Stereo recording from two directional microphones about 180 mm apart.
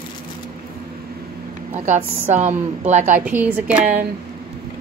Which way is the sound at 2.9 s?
40° right (ahead or behind).